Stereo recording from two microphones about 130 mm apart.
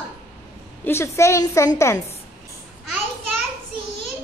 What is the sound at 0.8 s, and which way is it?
A woman's voice, 20° left (ahead or behind).